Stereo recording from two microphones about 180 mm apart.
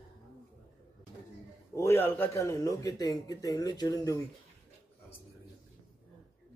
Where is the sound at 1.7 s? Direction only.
15° left (ahead or behind).